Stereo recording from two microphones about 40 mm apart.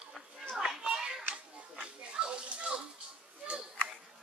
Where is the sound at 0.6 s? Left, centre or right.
Centre.